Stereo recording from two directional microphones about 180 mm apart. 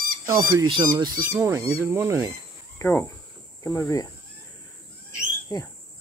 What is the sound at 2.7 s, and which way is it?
Speech, 10° left (ahead or behind).